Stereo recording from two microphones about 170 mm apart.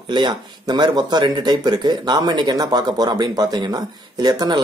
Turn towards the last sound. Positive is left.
turn(degrees=-25)  # may be behind; listen again after turning